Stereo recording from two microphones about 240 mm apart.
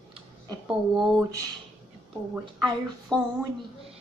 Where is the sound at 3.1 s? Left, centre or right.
Centre.